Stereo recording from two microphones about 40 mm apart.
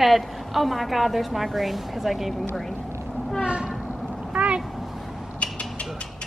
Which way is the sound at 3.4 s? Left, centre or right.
Right.